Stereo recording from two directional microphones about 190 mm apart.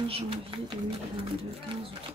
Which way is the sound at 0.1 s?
30° right (ahead or behind).